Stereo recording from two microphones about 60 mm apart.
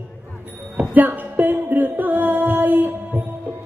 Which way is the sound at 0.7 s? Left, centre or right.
Right.